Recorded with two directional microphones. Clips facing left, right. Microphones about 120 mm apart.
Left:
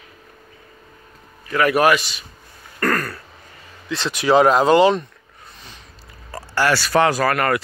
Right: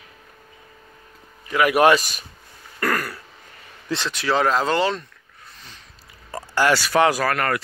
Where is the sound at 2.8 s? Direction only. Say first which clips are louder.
Left 3 dB; 10° right (ahead or behind).